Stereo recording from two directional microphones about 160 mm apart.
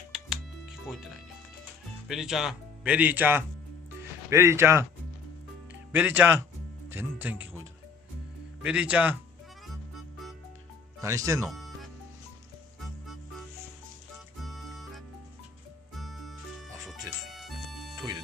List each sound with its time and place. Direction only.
0.1 s music: 5° right (ahead or behind)
0.8 s speech: 5° right (ahead or behind)
5.9 s speech: 10° right (ahead or behind)
6.9 s music: 10° right (ahead or behind)
8.6 s speech: 10° right (ahead or behind)
9.9 s music: centre (ahead or behind)
11.0 s speech: 20° right (ahead or behind)
11.4 s music: centre (ahead or behind)
14.4 s music: centre (ahead or behind)
17.4 s music: centre (ahead or behind)